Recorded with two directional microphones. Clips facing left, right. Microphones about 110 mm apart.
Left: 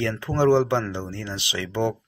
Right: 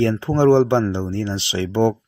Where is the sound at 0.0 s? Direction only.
30° right (ahead or behind).